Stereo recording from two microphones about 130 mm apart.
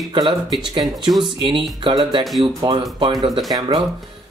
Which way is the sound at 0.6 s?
35° right (ahead or behind).